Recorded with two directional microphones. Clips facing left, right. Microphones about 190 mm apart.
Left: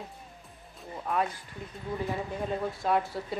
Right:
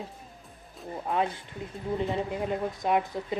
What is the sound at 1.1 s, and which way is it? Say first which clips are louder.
Speech: right 1 dB; 25° right (ahead or behind).